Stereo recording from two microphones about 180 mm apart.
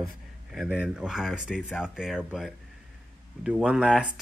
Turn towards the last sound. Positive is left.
turn(degrees=-5)  # may be behind; listen again after turning